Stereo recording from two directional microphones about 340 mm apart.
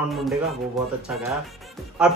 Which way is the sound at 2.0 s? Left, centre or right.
Centre.